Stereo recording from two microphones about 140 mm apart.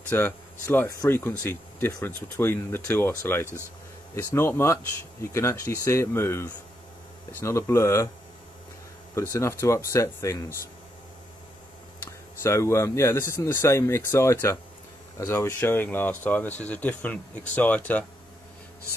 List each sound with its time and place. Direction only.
0.1 s speech: 15° left (ahead or behind)
9.1 s speech: 20° left (ahead or behind)
12.0 s speech: 20° left (ahead or behind)